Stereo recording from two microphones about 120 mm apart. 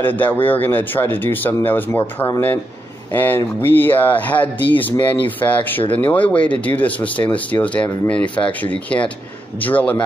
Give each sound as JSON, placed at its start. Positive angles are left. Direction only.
{"t": 0.0, "sound": "speech", "side_deg": 15}